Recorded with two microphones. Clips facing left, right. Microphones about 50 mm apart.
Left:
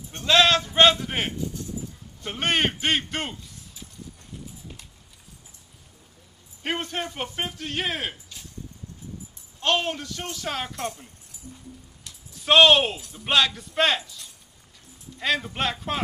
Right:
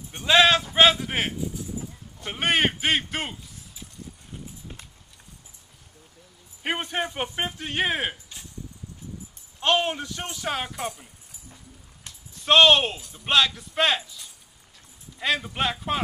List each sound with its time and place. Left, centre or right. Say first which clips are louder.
0.1 s a sound: right 1 dB; centre
2.2 s speech: right 1 dB; centre
6.6 s speech: right 1 dB; centre
9.6 s speech: right 2 dB; centre
12.4 s speech: left 1 dB; centre